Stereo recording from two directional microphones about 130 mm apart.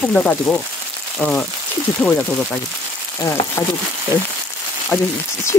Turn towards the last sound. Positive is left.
turn(degrees=25)  # may be behind; listen again after turning